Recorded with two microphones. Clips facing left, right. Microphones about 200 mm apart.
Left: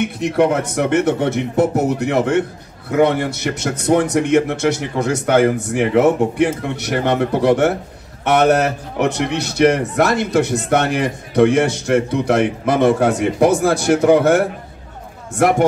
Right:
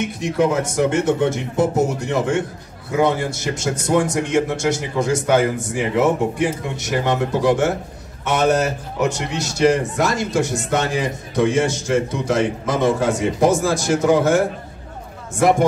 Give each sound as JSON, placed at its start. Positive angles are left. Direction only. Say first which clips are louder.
{"t": 0.0, "sound": "a man's voice", "louder": "left 3 dB", "side_deg": 65}